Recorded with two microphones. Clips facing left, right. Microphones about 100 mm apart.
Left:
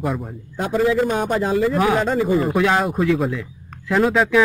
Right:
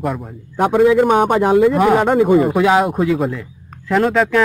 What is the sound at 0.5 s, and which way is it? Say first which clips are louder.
A man's voice: right 6 dB; 65° right (ahead or behind).